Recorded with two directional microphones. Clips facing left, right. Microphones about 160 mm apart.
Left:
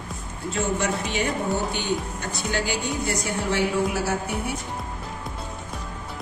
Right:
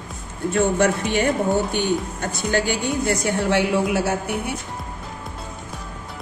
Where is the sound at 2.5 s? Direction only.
55° right (ahead or behind).